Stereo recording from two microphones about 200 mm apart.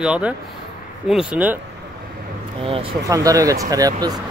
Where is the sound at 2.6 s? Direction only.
25° right (ahead or behind).